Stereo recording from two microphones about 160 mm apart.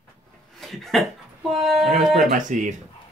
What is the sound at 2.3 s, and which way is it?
Speech, 55° right (ahead or behind).